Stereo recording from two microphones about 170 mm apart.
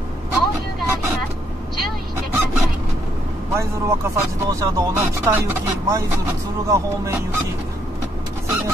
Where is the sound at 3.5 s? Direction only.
15° right (ahead or behind).